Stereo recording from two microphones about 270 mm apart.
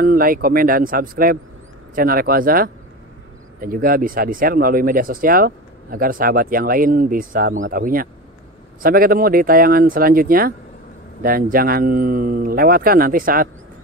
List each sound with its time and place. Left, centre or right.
0.0 s speech: right